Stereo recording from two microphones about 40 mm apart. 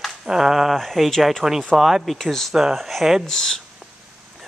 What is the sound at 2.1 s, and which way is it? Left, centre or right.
Speech, centre.